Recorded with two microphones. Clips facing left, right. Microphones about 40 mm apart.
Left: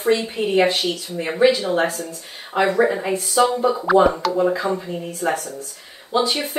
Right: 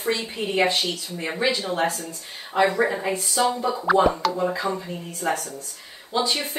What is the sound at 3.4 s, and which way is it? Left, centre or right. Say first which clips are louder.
Speech: left 5 dB; left.